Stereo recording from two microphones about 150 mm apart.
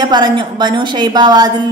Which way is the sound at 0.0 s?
30° right (ahead or behind).